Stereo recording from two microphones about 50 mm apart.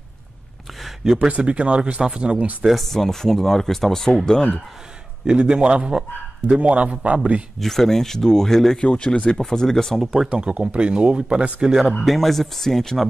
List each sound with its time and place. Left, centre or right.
0.8 s a sound: centre
1.3 s speech: right
2.6 s speech: centre
5.2 s speech: centre
7.6 s speech: centre
8.8 s speech: left
9.4 s speech: centre
10.3 s speech: right
12.0 s speech: centre